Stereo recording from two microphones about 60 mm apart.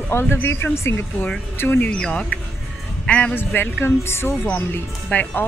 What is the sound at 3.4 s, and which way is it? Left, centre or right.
Speech, left.